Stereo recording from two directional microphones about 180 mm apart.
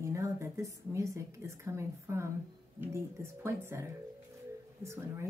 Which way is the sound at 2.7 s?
15° right (ahead or behind).